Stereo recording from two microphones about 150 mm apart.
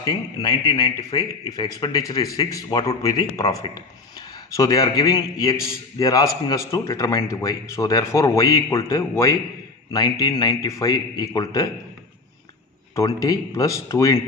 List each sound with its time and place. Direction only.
0.0 s a man's voice: 25° left (ahead or behind)
12.9 s a man's voice: 20° left (ahead or behind)